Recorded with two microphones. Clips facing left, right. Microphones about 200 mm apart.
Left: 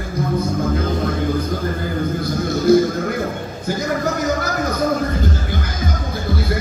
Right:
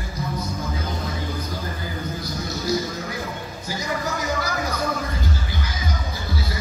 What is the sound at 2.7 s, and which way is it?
Music, 55° left (ahead or behind).